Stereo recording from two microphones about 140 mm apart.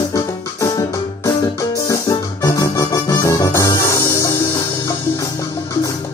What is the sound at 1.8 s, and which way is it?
Music, 25° left (ahead or behind).